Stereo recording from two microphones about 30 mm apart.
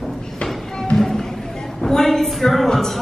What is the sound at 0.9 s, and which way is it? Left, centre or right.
Music, centre.